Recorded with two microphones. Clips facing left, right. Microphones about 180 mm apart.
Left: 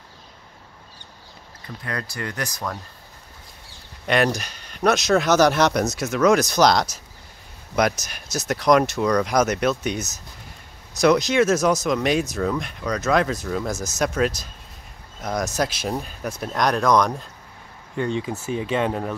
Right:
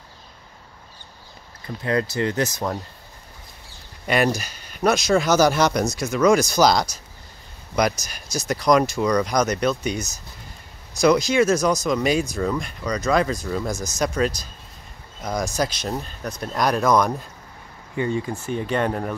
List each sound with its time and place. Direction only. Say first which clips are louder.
1.8 s speech: right 9 dB; 25° right (ahead or behind)
4.0 s speech: even; 5° right (ahead or behind)
8.0 s speech: even; centre (ahead or behind)
16.5 s speech: even; 5° right (ahead or behind)
18.2 s speech: even; 5° left (ahead or behind)